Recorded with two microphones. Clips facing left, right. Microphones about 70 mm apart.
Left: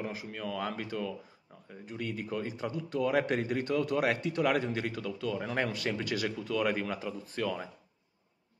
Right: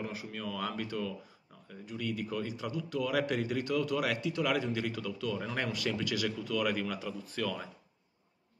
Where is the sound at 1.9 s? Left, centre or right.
Left.